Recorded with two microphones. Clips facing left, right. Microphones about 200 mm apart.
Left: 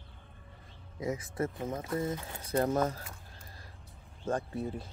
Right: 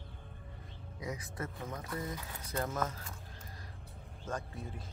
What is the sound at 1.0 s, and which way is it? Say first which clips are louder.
Speech: left 8 dB; 25° left (ahead or behind).